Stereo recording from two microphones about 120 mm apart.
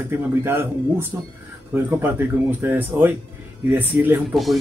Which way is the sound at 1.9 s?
15° right (ahead or behind).